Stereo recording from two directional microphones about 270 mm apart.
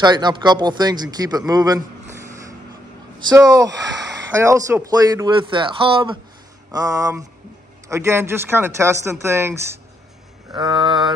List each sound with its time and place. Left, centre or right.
0.0 s a man's voice: centre
3.2 s a man's voice: centre